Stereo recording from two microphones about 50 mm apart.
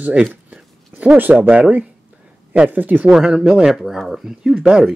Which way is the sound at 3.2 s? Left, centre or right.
Centre.